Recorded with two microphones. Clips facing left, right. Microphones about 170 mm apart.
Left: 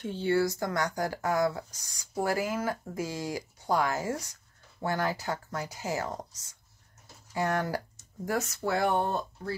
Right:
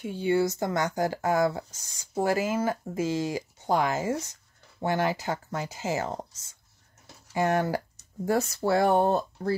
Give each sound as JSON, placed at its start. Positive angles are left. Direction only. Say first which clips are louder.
{"t": 0.0, "sound": "speech", "louder": "right 2 dB", "side_deg": -15}